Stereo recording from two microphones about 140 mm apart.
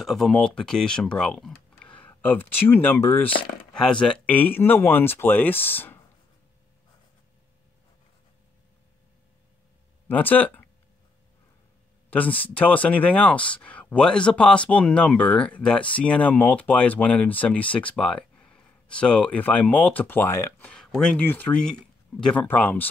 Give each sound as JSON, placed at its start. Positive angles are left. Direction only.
{"t": 0.0, "sound": "speech", "side_deg": 0}
{"t": 3.7, "sound": "speech", "side_deg": 5}
{"t": 10.0, "sound": "speech", "side_deg": 10}
{"t": 12.1, "sound": "speech", "side_deg": 10}